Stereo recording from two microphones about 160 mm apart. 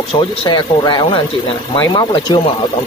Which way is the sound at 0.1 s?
35° left (ahead or behind).